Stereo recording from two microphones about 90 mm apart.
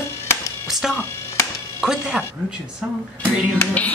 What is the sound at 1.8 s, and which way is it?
Speech, 5° right (ahead or behind).